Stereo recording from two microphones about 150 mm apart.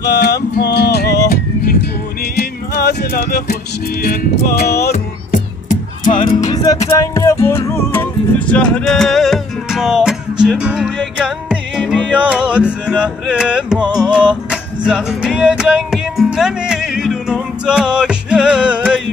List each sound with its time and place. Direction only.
0.0 s music: 90° left
2.3 s music: 90° left
4.9 s music: 60° left (ahead or behind)
6.5 s music: 25° left (ahead or behind); by 18.9 s 5° right (ahead or behind)